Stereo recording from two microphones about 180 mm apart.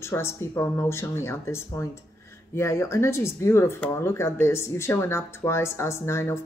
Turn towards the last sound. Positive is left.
turn(degrees=15)  # may be behind; listen again after turning